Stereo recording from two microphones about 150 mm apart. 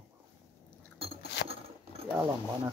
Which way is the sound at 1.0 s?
40° right (ahead or behind).